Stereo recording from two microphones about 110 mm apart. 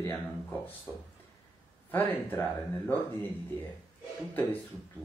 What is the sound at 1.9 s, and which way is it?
Speech, 15° left (ahead or behind).